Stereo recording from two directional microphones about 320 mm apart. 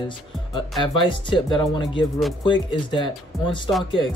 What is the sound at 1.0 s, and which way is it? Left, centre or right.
Speech, centre.